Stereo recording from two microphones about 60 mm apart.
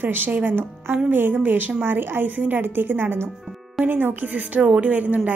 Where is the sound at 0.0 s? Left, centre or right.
Right.